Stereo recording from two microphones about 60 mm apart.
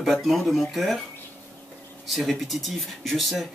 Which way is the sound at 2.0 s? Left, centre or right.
Centre.